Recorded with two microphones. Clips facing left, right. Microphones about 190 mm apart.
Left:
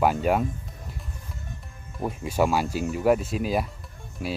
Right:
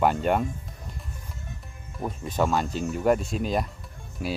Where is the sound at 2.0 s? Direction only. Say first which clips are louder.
Left 2 dB; 10° left (ahead or behind).